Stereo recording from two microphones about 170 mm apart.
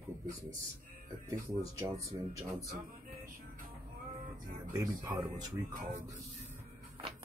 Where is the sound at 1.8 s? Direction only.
20° right (ahead or behind).